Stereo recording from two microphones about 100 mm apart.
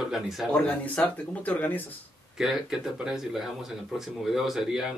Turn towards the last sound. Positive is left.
turn(degrees=-5)  # may be behind; listen again after turning